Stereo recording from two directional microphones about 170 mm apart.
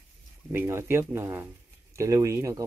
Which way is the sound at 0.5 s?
15° right (ahead or behind).